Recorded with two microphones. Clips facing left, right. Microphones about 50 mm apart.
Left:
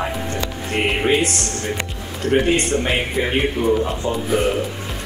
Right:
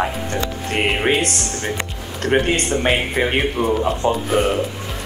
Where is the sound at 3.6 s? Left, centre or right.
Right.